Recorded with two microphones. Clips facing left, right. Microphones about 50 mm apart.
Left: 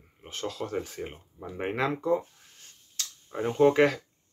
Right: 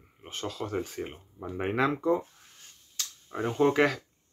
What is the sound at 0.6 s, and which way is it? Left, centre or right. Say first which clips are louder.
Speech: right 2 dB; centre.